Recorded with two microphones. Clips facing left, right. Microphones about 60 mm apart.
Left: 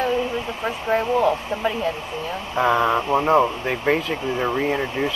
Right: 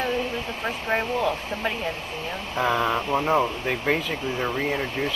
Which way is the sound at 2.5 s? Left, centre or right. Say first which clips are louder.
Left 5 dB; centre.